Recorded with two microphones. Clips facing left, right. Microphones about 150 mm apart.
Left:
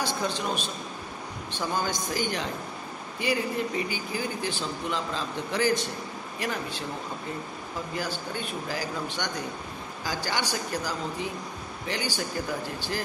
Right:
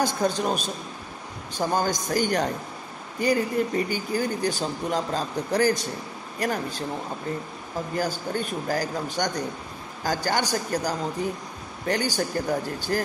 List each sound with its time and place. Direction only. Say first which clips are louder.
0.0 s speech: right 5 dB; 45° right (ahead or behind)
7.9 s speech: right 6 dB; 45° right (ahead or behind)